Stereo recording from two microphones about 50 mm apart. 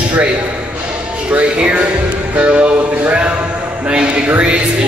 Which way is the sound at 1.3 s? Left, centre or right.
Right.